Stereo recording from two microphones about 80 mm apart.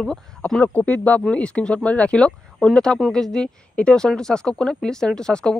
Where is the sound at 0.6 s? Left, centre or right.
Centre.